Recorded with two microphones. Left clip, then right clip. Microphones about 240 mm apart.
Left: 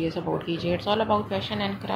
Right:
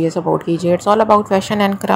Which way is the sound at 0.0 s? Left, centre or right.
Right.